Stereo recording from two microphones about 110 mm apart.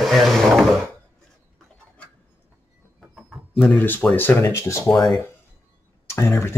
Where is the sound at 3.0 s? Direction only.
Centre (ahead or behind).